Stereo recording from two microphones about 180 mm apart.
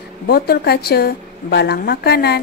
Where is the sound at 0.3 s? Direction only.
60° left (ahead or behind).